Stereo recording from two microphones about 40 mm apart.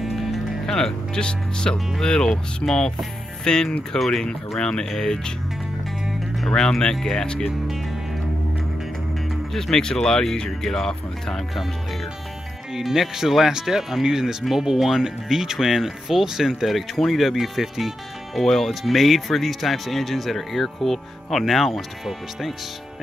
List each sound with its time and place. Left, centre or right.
0.0 s music: centre
0.7 s speech: centre
2.6 s speech: left
3.4 s speech: centre
6.4 s speech: centre
9.5 s speech: centre
12.7 s speech: centre
18.4 s speech: centre